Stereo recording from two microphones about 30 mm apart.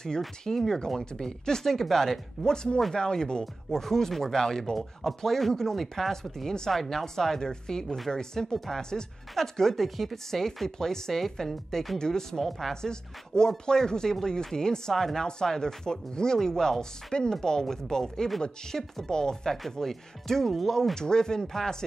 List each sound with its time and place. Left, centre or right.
0.5 s speech: centre
3.7 s speech: centre
12.4 s speech: centre
12.8 s speech: left
19.7 s speech: centre